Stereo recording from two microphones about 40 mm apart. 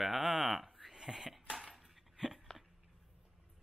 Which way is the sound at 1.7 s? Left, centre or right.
Centre.